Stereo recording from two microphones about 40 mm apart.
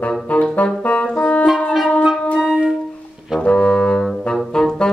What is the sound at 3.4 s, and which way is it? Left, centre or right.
Music, left.